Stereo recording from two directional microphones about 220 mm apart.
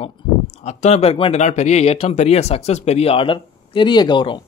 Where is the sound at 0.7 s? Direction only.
30° left (ahead or behind).